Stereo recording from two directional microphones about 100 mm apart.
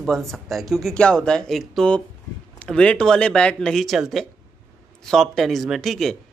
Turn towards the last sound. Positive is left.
turn(degrees=0)  # may be behind; listen again after turning